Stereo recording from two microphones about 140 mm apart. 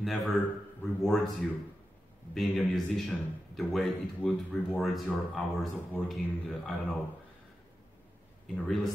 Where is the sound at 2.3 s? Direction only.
Centre (ahead or behind).